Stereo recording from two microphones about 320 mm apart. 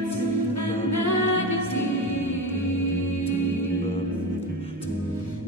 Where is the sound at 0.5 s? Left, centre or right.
Left.